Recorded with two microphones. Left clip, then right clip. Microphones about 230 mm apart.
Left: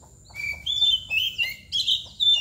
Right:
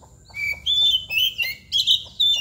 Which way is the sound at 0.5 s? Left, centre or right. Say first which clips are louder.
Right 3 dB; right.